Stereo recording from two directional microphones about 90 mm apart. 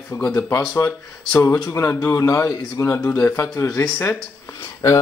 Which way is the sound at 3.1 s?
20° left (ahead or behind).